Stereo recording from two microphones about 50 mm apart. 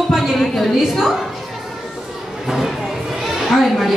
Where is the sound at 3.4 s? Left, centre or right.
Centre.